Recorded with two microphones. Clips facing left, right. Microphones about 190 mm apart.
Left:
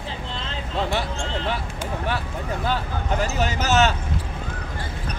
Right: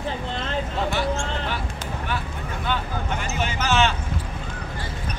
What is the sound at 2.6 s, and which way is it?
Vehicle, 35° left (ahead or behind).